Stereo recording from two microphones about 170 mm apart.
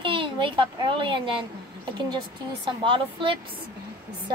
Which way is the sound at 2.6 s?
30° right (ahead or behind).